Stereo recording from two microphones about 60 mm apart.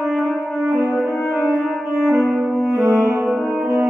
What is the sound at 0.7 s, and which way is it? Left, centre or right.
French horn, right.